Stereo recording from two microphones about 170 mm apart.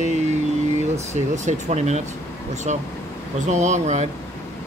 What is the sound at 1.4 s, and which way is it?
Speech, 40° right (ahead or behind).